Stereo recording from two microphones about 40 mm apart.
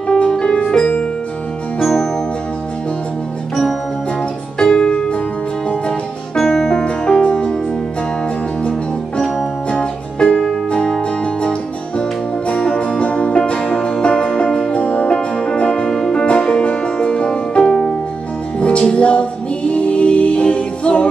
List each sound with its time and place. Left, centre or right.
0.1 s music: left
4.6 s music: centre
6.3 s music: centre
9.7 s music: left
12.0 s music: left
14.8 s music: left